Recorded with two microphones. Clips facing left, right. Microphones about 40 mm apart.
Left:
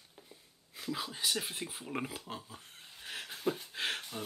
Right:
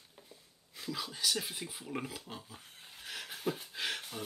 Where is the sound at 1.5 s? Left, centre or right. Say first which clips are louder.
Left 2 dB; left.